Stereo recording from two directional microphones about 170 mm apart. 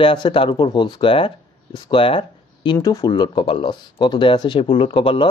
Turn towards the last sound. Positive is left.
turn(degrees=30)  # may be behind; listen again after turning